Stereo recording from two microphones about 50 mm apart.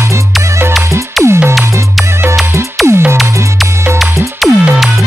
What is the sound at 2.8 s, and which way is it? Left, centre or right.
Music, right.